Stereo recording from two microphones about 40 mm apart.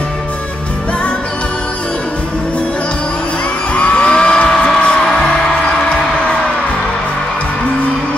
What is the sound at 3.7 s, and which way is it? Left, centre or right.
Music, left.